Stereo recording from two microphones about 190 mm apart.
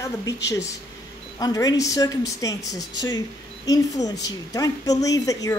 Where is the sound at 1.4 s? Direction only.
20° left (ahead or behind).